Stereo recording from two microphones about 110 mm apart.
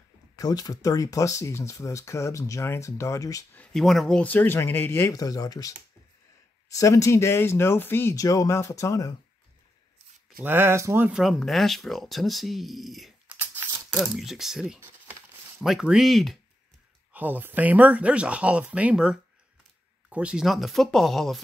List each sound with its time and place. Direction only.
0.4 s speech: 35° left (ahead or behind)
3.7 s speech: centre (ahead or behind)
4.2 s speech: 15° left (ahead or behind)
5.1 s speech: 35° left (ahead or behind)
6.7 s speech: 30° left (ahead or behind)
8.2 s speech: 30° left (ahead or behind)
10.4 s speech: 20° right (ahead or behind)
11.1 s speech: 5° right (ahead or behind)
13.3 s a sound: 15° right (ahead or behind)
13.9 s speech: 5° right (ahead or behind)
17.1 s speech: 15° right (ahead or behind); by 21.4 s 5° left (ahead or behind)